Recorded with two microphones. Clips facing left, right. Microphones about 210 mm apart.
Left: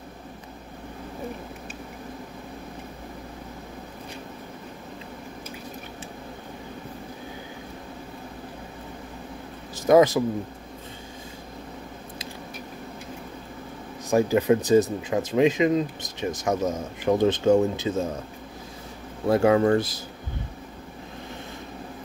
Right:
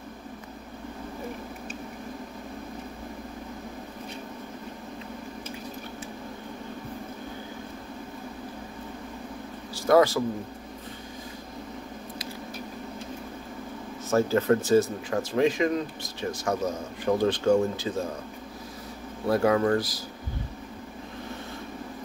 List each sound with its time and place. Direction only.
9.8 s speech: 20° left (ahead or behind)
14.1 s speech: 15° left (ahead or behind)
19.2 s speech: 25° left (ahead or behind)